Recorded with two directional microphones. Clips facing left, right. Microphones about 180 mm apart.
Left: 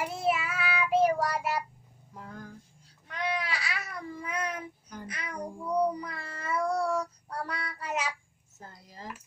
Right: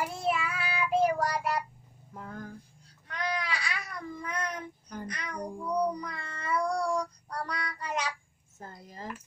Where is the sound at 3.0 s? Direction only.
Centre (ahead or behind).